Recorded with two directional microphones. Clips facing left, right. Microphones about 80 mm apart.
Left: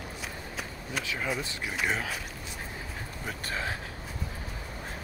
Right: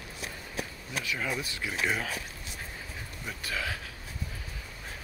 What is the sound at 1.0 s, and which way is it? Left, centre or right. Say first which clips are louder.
Speech: even; left.